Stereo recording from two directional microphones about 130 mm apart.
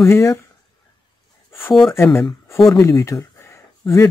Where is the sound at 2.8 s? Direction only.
20° left (ahead or behind).